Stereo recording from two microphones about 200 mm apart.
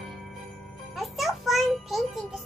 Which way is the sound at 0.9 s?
Centre (ahead or behind).